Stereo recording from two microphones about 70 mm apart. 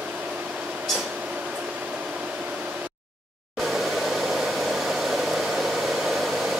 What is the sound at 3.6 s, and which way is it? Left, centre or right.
Hair dryer, centre.